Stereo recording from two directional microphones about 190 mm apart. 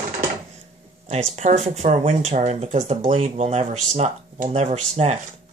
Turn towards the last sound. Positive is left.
turn(degrees=-35)  # may be behind; listen again after turning